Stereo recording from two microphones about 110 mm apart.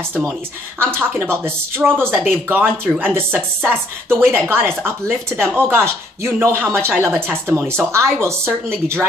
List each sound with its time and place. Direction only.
1.2 s speech: 20° right (ahead or behind)